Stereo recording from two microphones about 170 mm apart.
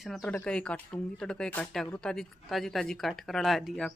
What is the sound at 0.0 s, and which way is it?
Speech, centre (ahead or behind).